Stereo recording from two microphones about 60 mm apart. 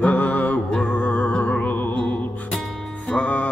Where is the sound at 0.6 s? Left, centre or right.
Centre.